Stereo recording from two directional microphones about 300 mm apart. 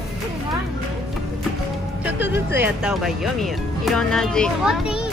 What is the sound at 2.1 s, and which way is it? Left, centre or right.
Speech, centre.